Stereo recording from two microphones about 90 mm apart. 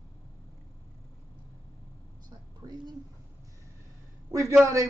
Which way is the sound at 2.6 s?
45° right (ahead or behind).